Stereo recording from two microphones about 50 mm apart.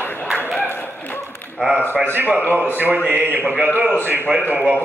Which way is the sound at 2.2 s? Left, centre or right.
Right.